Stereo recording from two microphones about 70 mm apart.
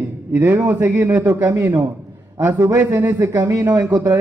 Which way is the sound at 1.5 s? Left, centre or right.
Right.